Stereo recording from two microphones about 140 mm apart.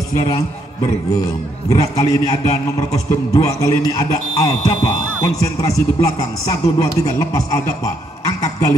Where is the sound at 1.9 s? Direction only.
30° left (ahead or behind).